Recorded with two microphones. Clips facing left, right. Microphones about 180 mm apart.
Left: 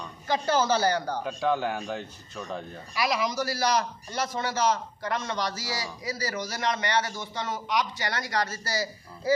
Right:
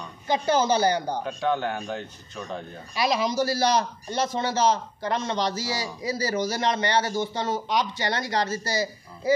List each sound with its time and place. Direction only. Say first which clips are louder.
0.3 s a woman's voice: right 2 dB; 15° right (ahead or behind)
1.2 s speech: right 1 dB; 5° left (ahead or behind)
2.9 s a man's voice: right 3 dB; 25° right (ahead or behind)